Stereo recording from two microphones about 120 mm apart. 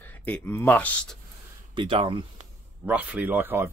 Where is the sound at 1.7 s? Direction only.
45° right (ahead or behind).